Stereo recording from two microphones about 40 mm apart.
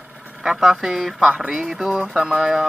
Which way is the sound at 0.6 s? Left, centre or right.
Centre.